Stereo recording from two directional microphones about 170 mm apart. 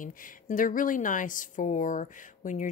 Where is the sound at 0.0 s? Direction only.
50° left (ahead or behind).